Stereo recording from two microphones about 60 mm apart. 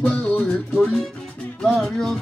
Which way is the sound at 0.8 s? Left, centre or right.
Centre.